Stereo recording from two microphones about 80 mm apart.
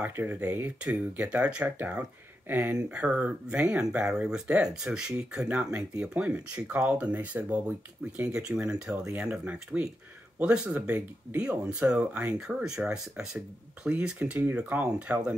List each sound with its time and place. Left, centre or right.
0.1 s speech: right